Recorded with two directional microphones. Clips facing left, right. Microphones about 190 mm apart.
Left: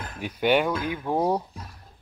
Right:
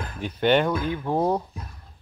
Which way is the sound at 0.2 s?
10° left (ahead or behind).